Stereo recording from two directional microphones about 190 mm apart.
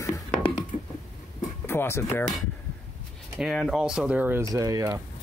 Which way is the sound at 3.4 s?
Centre (ahead or behind).